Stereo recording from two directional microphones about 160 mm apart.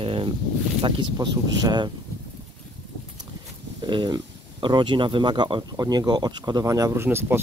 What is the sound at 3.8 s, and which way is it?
Speech, 30° right (ahead or behind).